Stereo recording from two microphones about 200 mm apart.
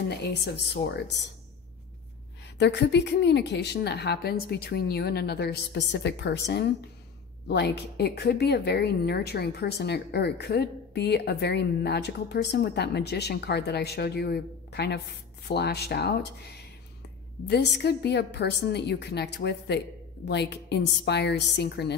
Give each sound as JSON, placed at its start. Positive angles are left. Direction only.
{"t": 2.6, "sound": "speech", "side_deg": 60}